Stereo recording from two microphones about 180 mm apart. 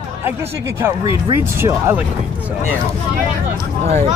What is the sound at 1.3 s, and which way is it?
Speech, 15° right (ahead or behind).